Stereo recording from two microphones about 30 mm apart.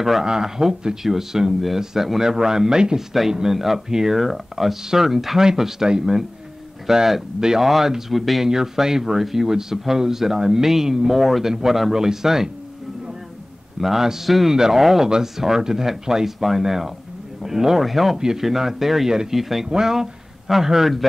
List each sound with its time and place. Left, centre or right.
0.2 s speech: right
3.5 s speech: centre
5.4 s speech: centre
6.9 s speech: centre
7.3 s speech: right
7.6 s speech: centre
8.5 s speech: centre
11.1 s speech: centre
13.7 s a man's voice: centre
14.5 s speech: centre
18.1 s speech: centre